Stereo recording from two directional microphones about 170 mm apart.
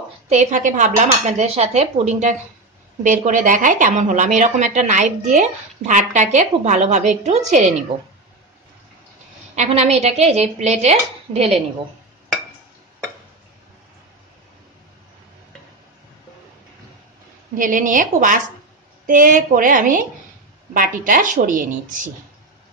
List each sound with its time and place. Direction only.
0.3 s a woman's voice: 45° right (ahead or behind)
9.6 s a woman's voice: 40° right (ahead or behind)
17.6 s a woman's voice: 50° right (ahead or behind)